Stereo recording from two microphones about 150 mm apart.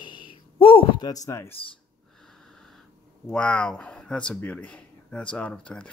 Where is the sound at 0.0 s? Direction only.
30° left (ahead or behind).